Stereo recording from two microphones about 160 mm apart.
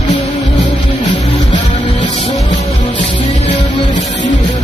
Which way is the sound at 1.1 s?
30° left (ahead or behind).